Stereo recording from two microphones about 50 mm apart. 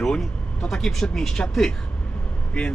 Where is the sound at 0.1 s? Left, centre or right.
Centre.